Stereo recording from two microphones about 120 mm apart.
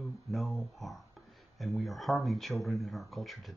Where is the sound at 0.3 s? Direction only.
Centre (ahead or behind).